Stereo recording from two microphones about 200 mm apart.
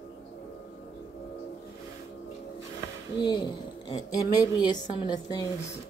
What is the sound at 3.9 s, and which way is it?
A woman's voice, 20° left (ahead or behind).